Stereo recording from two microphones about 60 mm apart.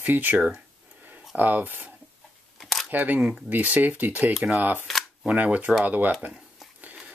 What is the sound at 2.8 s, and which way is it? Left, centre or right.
Speech, right.